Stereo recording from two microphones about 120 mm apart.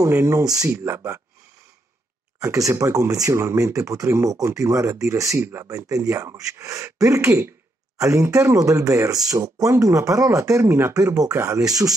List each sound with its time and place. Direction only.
0.0 s speech: 25° right (ahead or behind)
2.4 s speech: 25° right (ahead or behind)